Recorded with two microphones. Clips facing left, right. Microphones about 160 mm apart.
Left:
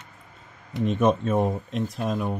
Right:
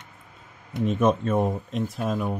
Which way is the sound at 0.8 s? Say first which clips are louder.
Even; centre (ahead or behind).